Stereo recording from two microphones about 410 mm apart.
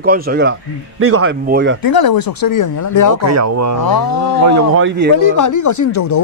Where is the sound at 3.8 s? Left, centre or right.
Left.